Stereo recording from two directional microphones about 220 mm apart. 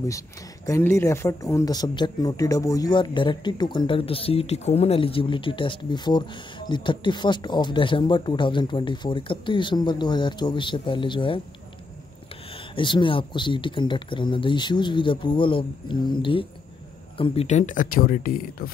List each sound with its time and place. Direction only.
0.7 s speech: 10° left (ahead or behind)
12.7 s speech: 20° left (ahead or behind); by 18.7 s 40° left (ahead or behind)